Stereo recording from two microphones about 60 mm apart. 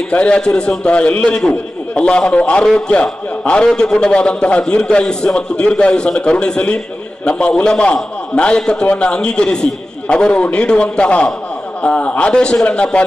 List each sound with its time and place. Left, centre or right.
0.1 s a man's voice: centre